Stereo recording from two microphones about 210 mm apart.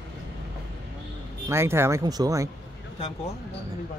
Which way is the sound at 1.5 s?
10° right (ahead or behind).